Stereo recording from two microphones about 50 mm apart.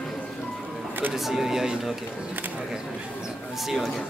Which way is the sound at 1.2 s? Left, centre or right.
Centre.